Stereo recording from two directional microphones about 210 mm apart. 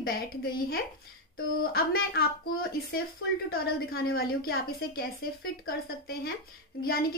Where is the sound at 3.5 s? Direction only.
45° left (ahead or behind).